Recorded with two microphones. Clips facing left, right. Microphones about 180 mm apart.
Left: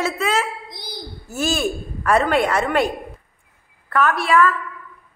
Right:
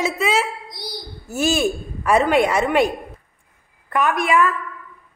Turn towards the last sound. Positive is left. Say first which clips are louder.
# left 1 dB
turn(degrees=-15)  # may be behind; listen again after turning